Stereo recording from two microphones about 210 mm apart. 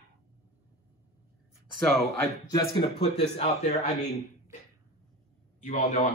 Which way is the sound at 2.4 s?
20° left (ahead or behind).